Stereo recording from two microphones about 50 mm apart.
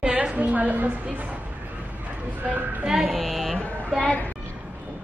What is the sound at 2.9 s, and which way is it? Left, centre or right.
Speech, centre.